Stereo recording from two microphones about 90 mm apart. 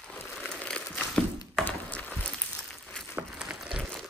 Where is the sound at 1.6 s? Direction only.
15° left (ahead or behind).